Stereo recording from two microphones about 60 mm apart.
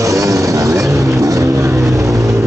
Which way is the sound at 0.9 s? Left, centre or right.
Right.